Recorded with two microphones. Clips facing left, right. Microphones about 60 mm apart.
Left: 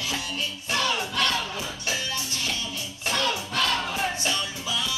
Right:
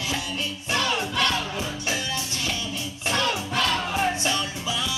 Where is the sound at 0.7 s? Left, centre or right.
Right.